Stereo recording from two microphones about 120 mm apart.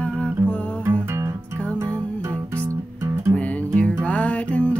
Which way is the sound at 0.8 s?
20° right (ahead or behind).